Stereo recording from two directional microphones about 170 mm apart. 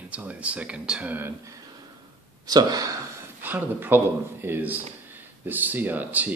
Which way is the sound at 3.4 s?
10° right (ahead or behind).